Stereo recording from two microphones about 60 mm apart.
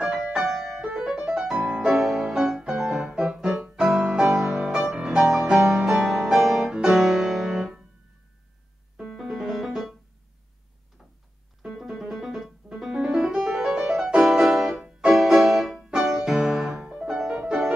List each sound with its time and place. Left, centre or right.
0.3 s music: centre
4.4 s music: centre
9.0 s music: centre
11.6 s music: centre
15.1 s music: centre